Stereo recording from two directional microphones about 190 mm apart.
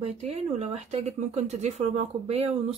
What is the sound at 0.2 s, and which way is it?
Speech, 35° right (ahead or behind).